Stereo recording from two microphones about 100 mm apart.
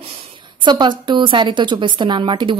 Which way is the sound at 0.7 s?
50° right (ahead or behind).